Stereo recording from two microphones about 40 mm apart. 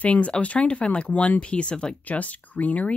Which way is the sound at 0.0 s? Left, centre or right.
Left.